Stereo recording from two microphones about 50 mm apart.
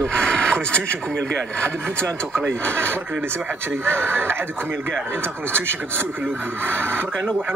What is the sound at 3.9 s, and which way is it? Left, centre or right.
Speech, right.